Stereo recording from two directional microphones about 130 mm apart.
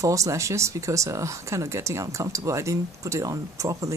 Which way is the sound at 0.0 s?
25° right (ahead or behind).